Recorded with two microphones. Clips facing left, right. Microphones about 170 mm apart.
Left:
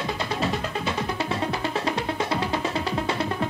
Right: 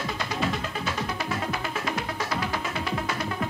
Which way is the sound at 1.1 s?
30° left (ahead or behind).